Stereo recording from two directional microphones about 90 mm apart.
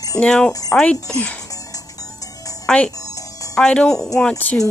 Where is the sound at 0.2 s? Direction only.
10° left (ahead or behind).